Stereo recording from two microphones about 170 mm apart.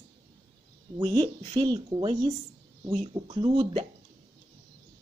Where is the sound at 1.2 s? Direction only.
30° right (ahead or behind).